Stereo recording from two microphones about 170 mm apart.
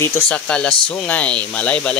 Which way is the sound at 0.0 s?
5° left (ahead or behind).